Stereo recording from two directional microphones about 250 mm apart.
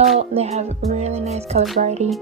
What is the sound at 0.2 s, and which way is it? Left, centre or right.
Music, right.